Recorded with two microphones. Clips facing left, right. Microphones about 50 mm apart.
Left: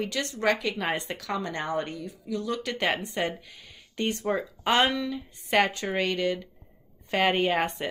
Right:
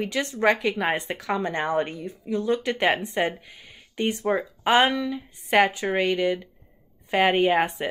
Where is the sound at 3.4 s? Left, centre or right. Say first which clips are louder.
Right 2 dB; centre.